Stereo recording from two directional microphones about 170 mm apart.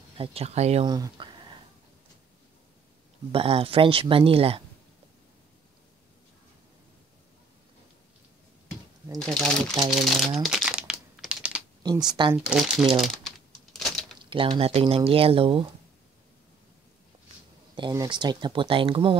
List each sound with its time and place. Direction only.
0.2 s speech: 35° right (ahead or behind)
0.8 s speech: 25° right (ahead or behind)
3.3 s speech: 30° right (ahead or behind)
9.2 s speech: 5° left (ahead or behind)
10.4 s crumpling: centre (ahead or behind)
11.8 s speech: 25° right (ahead or behind)
12.4 s speech: 5° right (ahead or behind)
13.7 s a sound: centre (ahead or behind)
14.1 s speech: 30° right (ahead or behind)
17.7 s speech: 25° right (ahead or behind)